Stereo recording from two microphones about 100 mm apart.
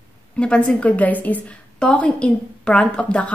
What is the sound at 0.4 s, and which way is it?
A woman's voice, 10° left (ahead or behind).